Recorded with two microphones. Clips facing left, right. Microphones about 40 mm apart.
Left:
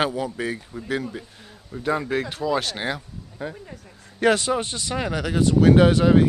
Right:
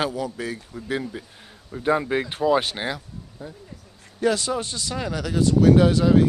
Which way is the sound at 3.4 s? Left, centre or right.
Left.